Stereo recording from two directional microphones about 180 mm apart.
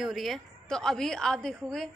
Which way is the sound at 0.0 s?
Centre (ahead or behind).